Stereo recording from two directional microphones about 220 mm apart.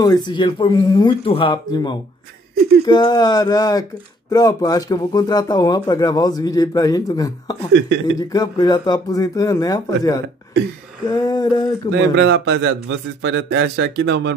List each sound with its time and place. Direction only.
0.0 s speech: 20° left (ahead or behind)
7.7 s a man's voice: 55° right (ahead or behind)
8.2 s speech: 15° left (ahead or behind)
11.9 s a man's voice: 55° right (ahead or behind)